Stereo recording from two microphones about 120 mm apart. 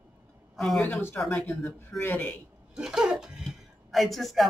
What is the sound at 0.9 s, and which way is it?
A man's voice, 15° left (ahead or behind).